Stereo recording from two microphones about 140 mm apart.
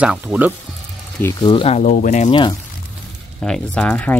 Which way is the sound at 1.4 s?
35° left (ahead or behind).